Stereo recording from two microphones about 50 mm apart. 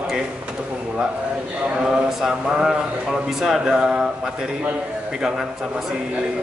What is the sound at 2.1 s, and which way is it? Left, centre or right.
A man's voice, centre.